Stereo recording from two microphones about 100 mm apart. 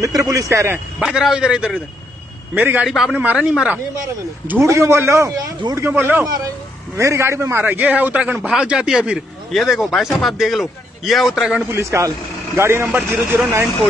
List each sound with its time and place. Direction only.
0.0 s speech: 35° right (ahead or behind)
0.9 s speech: 5° right (ahead or behind)
2.5 s a man's voice: 15° right (ahead or behind)
2.9 s speech: centre (ahead or behind)
3.2 s a man's voice: 15° right (ahead or behind)
4.5 s a man's voice: 30° right (ahead or behind); by 11.6 s 5° right (ahead or behind)
11.7 s a man's voice: 30° right (ahead or behind)